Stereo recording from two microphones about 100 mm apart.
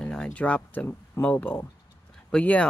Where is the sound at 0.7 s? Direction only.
20° left (ahead or behind).